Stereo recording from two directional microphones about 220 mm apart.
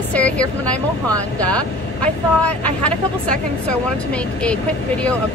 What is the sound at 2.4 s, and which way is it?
Speech, 5° left (ahead or behind).